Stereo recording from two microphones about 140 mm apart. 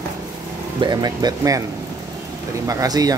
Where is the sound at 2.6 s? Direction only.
25° right (ahead or behind).